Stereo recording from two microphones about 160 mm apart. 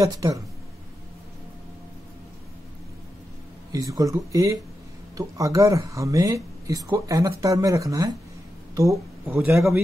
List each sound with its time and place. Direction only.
0.0 s speech: 20° right (ahead or behind)
3.7 s speech: 20° right (ahead or behind)